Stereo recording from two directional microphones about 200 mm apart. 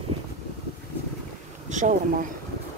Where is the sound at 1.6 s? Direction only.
40° right (ahead or behind).